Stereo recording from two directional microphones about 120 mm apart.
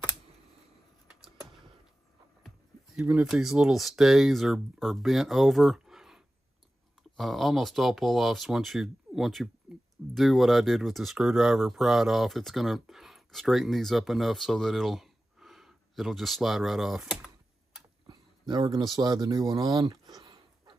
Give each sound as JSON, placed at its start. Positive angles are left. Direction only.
{"t": 3.0, "sound": "speech", "side_deg": -10}
{"t": 9.7, "sound": "a sound", "side_deg": -5}
{"t": 10.1, "sound": "speech", "side_deg": 0}
{"t": 18.5, "sound": "speech", "side_deg": -35}